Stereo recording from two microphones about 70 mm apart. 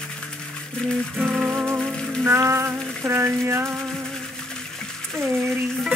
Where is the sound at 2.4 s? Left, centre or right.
Right.